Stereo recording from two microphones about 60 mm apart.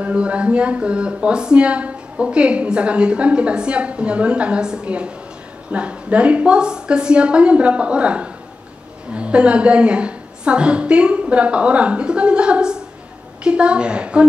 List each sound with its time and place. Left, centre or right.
0.0 s a woman's voice: right